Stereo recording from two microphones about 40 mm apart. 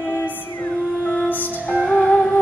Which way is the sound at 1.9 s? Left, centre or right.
Left.